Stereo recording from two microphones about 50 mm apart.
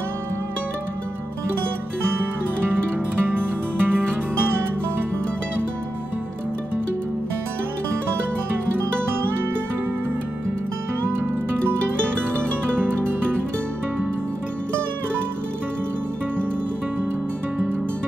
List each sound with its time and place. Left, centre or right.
3.3 s music: right
12.0 s music: right